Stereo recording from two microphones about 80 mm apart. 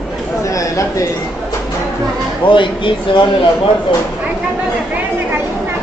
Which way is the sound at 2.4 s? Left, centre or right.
Left.